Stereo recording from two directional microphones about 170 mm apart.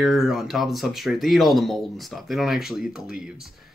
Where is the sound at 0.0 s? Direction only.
Centre (ahead or behind).